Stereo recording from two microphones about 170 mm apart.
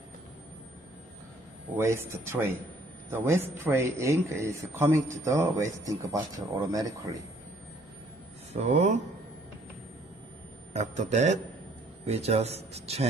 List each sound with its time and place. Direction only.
1.8 s a man's voice: 15° right (ahead or behind)
8.5 s speech: 40° right (ahead or behind)
10.7 s a man's voice: 45° right (ahead or behind)